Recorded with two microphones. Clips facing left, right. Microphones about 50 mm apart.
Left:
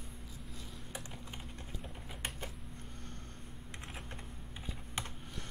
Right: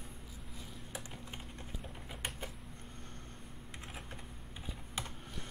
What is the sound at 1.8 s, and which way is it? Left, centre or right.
Typing, centre.